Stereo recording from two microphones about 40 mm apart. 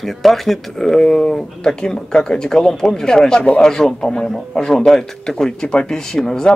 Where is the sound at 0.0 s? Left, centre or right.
Centre.